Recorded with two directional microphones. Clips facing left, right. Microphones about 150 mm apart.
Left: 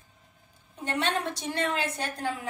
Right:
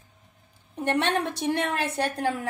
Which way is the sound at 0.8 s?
65° right (ahead or behind).